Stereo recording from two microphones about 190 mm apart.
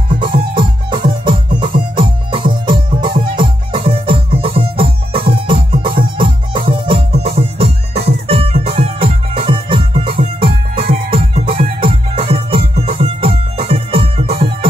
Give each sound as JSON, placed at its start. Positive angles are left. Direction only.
{"t": 1.0, "sound": "music", "side_deg": -25}